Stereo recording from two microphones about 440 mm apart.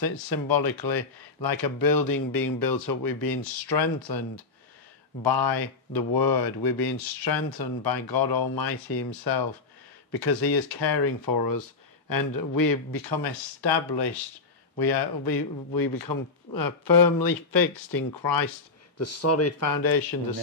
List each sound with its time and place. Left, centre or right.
0.0 s speech: left
5.2 s speech: left
18.9 s speech: left